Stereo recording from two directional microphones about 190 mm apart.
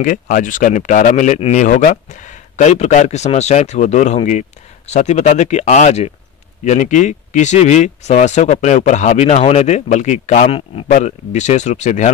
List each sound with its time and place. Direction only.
0.0 s speech: 45° left (ahead or behind)